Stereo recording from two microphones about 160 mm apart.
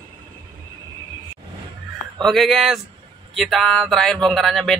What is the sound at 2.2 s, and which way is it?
Speech, centre (ahead or behind).